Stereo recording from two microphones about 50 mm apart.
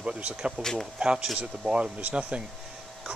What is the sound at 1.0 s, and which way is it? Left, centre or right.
Speech, centre.